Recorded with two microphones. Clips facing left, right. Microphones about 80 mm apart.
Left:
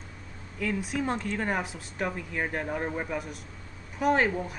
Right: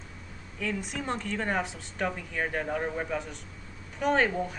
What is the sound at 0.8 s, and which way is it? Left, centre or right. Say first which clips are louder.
Speech: left 3 dB; centre.